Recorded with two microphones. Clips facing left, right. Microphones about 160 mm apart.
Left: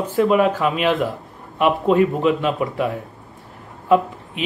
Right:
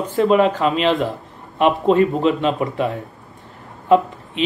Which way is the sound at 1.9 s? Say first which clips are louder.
Right 1 dB; 5° left (ahead or behind).